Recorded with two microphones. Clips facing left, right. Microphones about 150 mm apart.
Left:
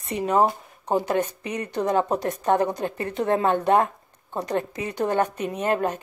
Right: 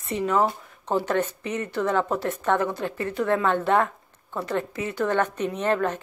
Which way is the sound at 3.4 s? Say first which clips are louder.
Left 4 dB; 20° left (ahead or behind).